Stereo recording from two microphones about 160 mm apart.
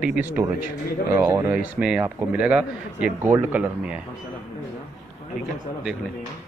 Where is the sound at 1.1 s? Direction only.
20° right (ahead or behind).